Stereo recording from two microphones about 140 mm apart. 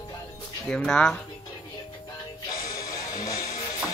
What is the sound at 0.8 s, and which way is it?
Speech, 5° left (ahead or behind).